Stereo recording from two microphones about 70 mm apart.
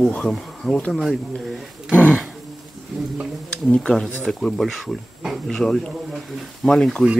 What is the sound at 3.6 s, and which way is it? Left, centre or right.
Speech, centre.